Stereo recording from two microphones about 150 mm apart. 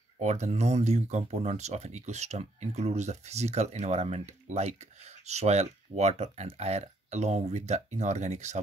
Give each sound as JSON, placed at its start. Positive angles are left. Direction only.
{"t": 0.2, "sound": "speech", "side_deg": -50}